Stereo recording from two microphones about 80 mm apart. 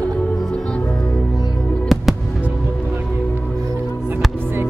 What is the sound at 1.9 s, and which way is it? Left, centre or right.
Music, centre.